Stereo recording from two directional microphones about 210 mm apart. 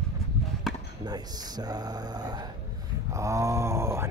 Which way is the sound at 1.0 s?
20° right (ahead or behind).